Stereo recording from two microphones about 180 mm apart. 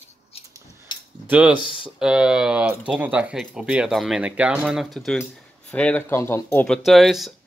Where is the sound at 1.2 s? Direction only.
10° right (ahead or behind); by 6.8 s 10° left (ahead or behind).